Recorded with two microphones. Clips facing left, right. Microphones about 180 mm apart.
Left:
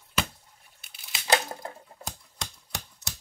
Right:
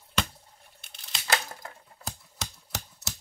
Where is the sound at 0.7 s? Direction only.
5° left (ahead or behind).